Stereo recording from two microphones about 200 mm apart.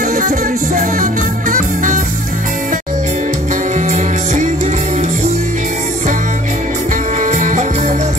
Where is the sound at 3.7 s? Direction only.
35° right (ahead or behind).